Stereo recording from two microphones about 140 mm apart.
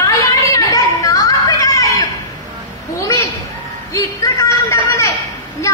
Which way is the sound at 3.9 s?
25° left (ahead or behind).